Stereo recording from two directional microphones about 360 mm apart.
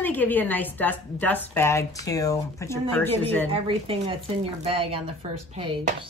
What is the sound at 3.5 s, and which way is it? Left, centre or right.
Speech, centre.